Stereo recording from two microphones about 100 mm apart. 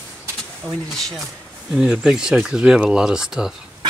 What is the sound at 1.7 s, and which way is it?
Speech, 10° right (ahead or behind).